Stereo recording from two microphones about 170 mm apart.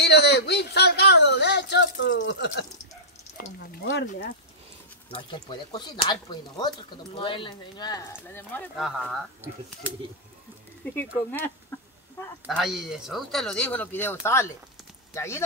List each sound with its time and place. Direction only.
0.0 s a sound: 75° left (ahead or behind)
3.7 s speech: 55° left (ahead or behind)
5.3 s speech: 30° left (ahead or behind)
8.3 s speech: 10° left (ahead or behind)
8.7 s speech: centre (ahead or behind)
11.7 s a sound: 15° left (ahead or behind)
12.4 s speech: centre (ahead or behind); by 15.4 s 15° left (ahead or behind)